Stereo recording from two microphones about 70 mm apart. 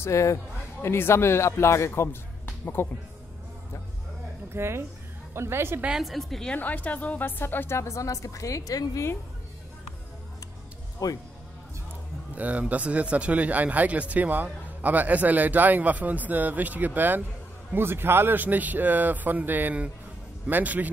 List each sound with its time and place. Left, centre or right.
0.0 s a man's voice: left
0.8 s a woman's voice: left
4.6 s a woman's voice: right
5.9 s a woman's voice: centre
6.5 s a woman's voice: left
11.0 s speech: left
12.4 s speech: right